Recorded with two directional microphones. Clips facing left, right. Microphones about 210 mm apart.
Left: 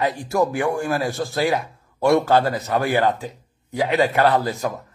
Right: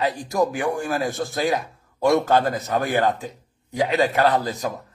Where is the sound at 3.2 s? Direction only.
15° right (ahead or behind).